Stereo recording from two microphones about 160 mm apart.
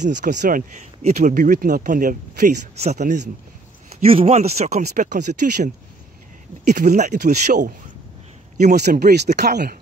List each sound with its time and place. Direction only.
0.0 s speech: 50° right (ahead or behind)
6.7 s speech: 50° right (ahead or behind)
8.7 s speech: 90° right